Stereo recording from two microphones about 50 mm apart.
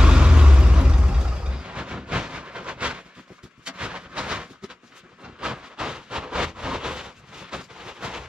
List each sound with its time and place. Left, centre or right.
0.0 s vehicle: centre
3.6 s artillery fire: centre
5.4 s a sound: centre